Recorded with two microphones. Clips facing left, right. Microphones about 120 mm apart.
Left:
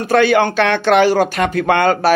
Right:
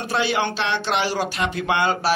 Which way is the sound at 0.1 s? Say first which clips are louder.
Left 10 dB; 55° left (ahead or behind).